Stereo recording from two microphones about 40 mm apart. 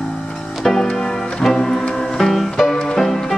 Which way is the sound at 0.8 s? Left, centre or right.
Centre.